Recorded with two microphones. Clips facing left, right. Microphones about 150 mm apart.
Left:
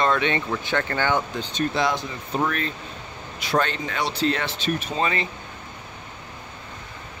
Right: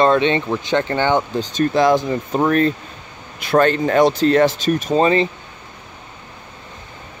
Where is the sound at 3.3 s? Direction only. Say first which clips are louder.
Right 9 dB; 50° right (ahead or behind); by 5.3 s 30° right (ahead or behind).